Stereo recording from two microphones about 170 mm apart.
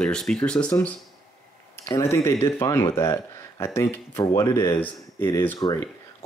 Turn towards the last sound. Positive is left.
turn(degrees=20)  # may be behind; listen again after turning